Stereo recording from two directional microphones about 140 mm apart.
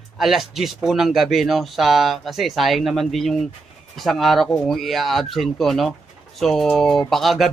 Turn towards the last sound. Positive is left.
turn(degrees=0)  # may be behind; listen again after turning